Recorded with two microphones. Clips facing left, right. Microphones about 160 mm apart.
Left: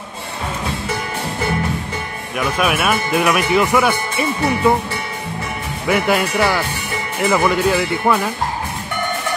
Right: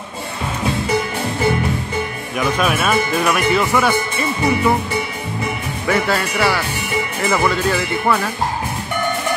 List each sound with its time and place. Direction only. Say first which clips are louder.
2.3 s speech: even; 5° left (ahead or behind)
5.9 s speech: left 2 dB; 15° left (ahead or behind)